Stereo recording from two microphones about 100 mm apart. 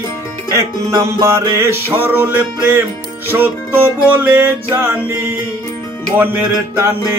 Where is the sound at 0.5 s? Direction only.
30° right (ahead or behind).